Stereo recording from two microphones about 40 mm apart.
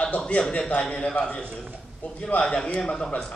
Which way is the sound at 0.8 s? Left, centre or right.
Centre.